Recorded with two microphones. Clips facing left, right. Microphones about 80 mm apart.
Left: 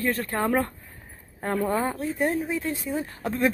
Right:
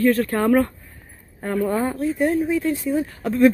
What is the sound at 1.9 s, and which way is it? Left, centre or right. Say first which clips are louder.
Speech: right 5 dB; left.